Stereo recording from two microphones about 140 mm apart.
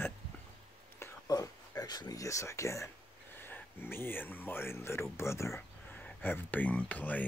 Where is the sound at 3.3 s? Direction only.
15° left (ahead or behind).